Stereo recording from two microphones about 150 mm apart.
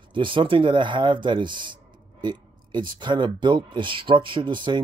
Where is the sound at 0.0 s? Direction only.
35° right (ahead or behind).